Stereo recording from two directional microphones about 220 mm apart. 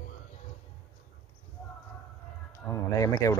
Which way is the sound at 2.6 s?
15° left (ahead or behind).